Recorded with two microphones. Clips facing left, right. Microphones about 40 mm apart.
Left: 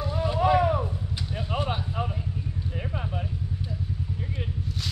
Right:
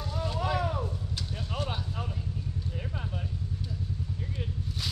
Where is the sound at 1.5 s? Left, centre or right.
Left.